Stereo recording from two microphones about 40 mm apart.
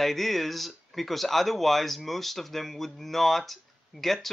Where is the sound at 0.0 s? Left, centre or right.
Centre.